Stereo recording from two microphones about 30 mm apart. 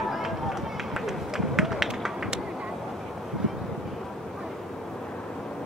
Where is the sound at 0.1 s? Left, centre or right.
Centre.